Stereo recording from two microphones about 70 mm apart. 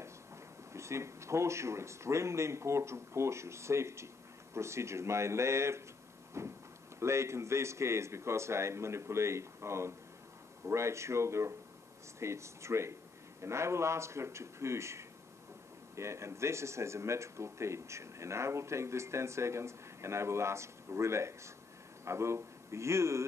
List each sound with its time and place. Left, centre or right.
0.7 s speech: right
6.4 s a sound: right
7.0 s a man's voice: right